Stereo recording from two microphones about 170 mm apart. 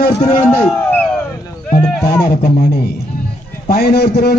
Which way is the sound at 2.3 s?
65° left (ahead or behind).